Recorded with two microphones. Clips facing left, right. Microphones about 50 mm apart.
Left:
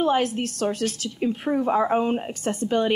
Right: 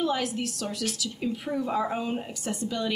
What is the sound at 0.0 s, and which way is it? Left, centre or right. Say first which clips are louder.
A woman's voice: left 6 dB; left.